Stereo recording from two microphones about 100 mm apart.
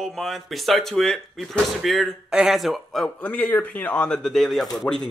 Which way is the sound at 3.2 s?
15° left (ahead or behind).